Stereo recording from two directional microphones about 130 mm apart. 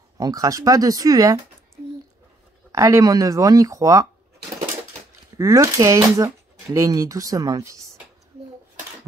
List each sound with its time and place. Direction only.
0.2 s speech: 25° right (ahead or behind)
2.7 s speech: 25° right (ahead or behind)
5.4 s speech: 25° right (ahead or behind)